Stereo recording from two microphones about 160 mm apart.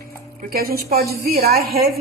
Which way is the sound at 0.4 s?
70° right (ahead or behind).